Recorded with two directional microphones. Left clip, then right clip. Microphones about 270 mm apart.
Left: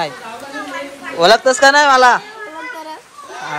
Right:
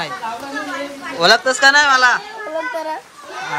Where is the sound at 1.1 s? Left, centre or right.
Centre.